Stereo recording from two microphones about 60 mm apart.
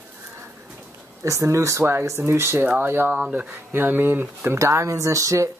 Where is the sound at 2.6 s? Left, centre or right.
Right.